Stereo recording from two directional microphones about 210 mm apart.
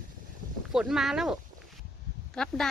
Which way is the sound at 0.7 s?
Centre (ahead or behind).